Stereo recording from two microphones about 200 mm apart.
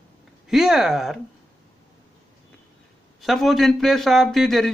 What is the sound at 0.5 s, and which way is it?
Speech, centre (ahead or behind).